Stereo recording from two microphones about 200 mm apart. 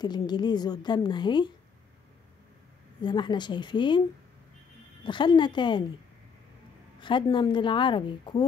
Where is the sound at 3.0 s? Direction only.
20° left (ahead or behind).